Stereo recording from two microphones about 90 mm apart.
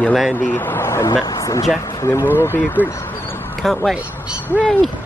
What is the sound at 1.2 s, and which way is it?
Vehicle, 40° left (ahead or behind).